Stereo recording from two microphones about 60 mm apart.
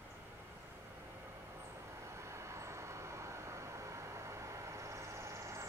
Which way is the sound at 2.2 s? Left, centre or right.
Right.